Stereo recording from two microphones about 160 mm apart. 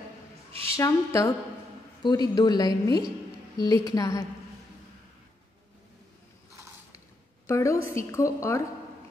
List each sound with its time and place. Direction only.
0.5 s a sound: 35° right (ahead or behind)
0.7 s a woman's voice: 20° left (ahead or behind)
7.4 s a woman's voice: 20° left (ahead or behind)